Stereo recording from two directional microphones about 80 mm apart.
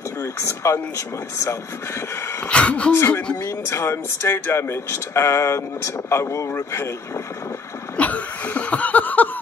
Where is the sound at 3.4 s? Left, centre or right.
Left.